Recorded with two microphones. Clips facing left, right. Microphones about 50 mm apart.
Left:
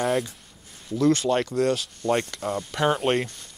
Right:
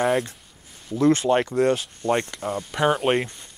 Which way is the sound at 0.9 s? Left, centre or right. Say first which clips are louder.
Right 2 dB; right.